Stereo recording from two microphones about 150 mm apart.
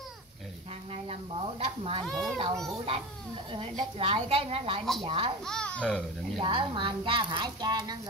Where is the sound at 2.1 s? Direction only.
Centre (ahead or behind).